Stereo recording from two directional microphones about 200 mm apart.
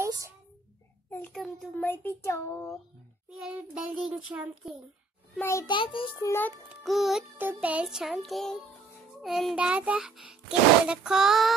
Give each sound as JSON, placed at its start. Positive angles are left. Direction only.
{"t": 0.0, "sound": "a sound", "side_deg": -15}
{"t": 1.1, "sound": "a child's voice", "side_deg": 5}
{"t": 3.3, "sound": "music", "side_deg": -5}
{"t": 5.4, "sound": "a child's voice", "side_deg": 15}
{"t": 6.8, "sound": "music", "side_deg": 0}